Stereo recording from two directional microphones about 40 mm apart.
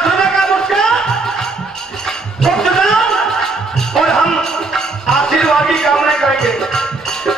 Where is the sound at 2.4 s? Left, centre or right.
Centre.